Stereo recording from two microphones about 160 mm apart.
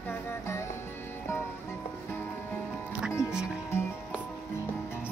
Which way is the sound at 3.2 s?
25° left (ahead or behind).